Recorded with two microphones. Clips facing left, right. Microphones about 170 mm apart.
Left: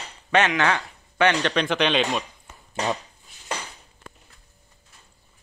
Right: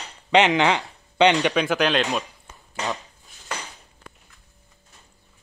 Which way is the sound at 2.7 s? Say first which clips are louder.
Left 3 dB; 20° left (ahead or behind).